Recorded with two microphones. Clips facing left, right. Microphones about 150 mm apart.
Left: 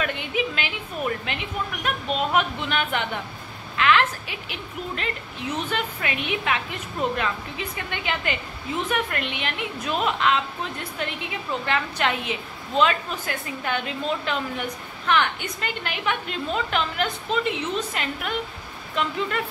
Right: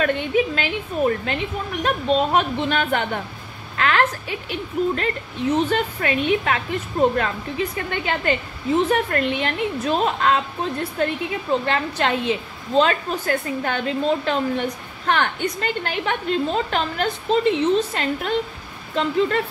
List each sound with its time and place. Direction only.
0.0 s a woman's voice: 40° right (ahead or behind)